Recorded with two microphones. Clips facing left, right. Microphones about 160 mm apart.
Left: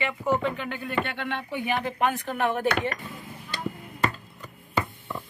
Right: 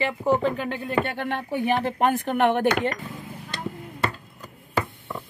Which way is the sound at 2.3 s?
65° right (ahead or behind).